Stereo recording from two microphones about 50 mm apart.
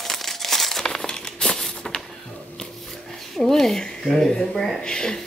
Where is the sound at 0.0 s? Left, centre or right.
Centre.